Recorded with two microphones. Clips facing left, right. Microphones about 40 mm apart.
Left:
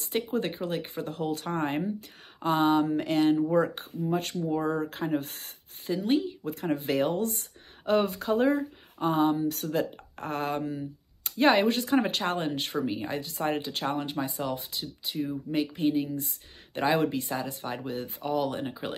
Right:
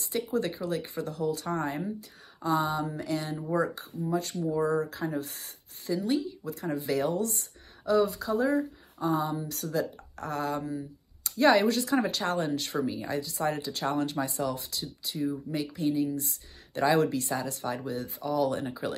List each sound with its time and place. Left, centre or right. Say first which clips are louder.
0.0 s speech: left 1 dB; left
2.4 s a sound: left 4 dB; left
3.5 s speech: left 3 dB; left
4.1 s a sound: left 1 dB; left
4.8 s speech: left 3 dB; left
13.8 s speech: right 3 dB; left
18.4 s speech: right 2 dB; left